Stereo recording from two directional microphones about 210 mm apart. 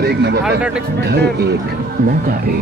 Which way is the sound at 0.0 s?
50° right (ahead or behind).